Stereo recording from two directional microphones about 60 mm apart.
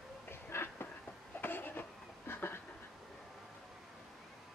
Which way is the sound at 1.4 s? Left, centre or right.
Left.